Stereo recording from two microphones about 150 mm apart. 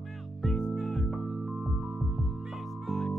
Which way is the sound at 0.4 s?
5° left (ahead or behind).